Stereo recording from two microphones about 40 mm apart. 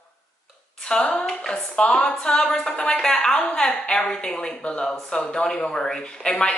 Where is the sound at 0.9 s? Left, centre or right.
Left.